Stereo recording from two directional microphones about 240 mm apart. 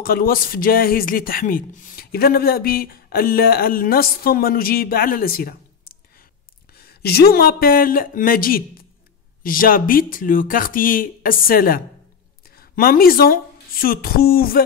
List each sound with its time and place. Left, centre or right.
0.0 s a woman's voice: left